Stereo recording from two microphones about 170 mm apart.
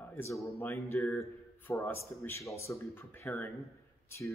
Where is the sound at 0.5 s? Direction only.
15° left (ahead or behind).